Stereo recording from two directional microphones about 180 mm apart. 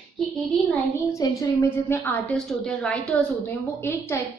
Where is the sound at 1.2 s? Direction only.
20° left (ahead or behind).